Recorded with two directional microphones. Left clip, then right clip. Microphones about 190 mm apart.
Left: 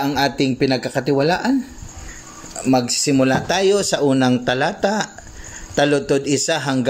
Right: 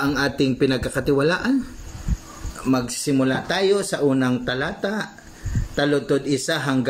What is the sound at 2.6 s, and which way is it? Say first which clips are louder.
Speech: left 5 dB; 15° left (ahead or behind).